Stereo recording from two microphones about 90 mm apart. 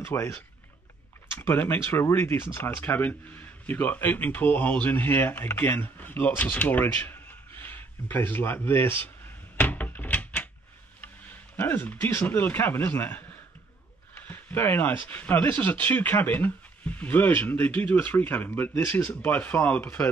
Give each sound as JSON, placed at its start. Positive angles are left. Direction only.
{"t": 0.0, "sound": "speech", "side_deg": 30}
{"t": 1.3, "sound": "speech", "side_deg": 25}
{"t": 9.6, "sound": "door", "side_deg": 20}
{"t": 11.5, "sound": "speech", "side_deg": 20}
{"t": 14.2, "sound": "speech", "side_deg": 20}